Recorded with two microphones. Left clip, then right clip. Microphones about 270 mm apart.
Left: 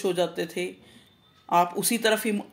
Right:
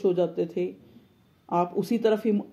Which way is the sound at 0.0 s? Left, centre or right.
Centre.